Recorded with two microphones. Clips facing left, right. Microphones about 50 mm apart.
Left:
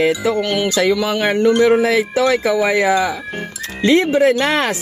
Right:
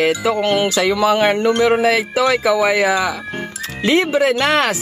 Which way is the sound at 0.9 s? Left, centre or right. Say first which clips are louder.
Right 2 dB; centre.